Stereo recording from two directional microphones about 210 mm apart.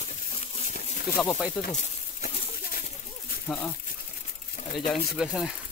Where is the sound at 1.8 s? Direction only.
40° left (ahead or behind).